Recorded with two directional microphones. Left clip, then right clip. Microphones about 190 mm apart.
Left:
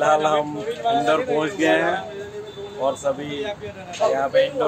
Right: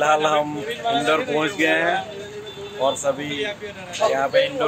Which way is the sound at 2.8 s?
15° right (ahead or behind).